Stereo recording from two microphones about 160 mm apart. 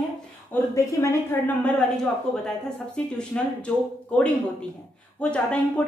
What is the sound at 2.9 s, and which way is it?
Speech, 5° left (ahead or behind).